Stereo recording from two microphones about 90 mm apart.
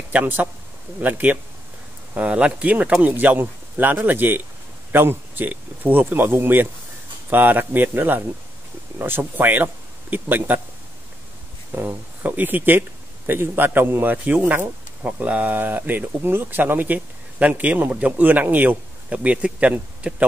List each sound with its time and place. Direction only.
0.1 s speech: 20° right (ahead or behind)
11.7 s speech: 20° right (ahead or behind)